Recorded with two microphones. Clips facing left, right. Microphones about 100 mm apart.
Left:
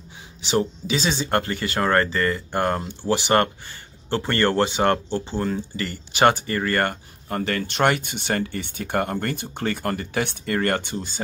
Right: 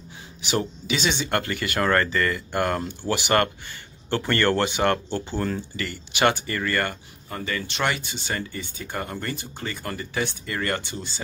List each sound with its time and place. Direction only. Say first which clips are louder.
0.4 s speech: left 4 dB; 30° left (ahead or behind)
5.8 s speech: left 4 dB; 40° left (ahead or behind)
7.2 s speech: left 5 dB; 65° left (ahead or behind)
7.7 s speech: left 6 dB; 50° left (ahead or behind)